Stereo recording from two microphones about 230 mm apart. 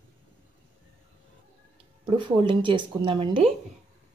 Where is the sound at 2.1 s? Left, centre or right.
Right.